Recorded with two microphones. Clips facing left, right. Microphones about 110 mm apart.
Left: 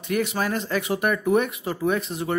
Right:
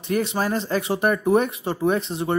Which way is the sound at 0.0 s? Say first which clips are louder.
Right 2 dB; 30° right (ahead or behind).